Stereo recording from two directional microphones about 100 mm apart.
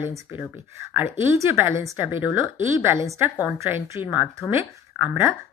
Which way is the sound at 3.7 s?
20° right (ahead or behind).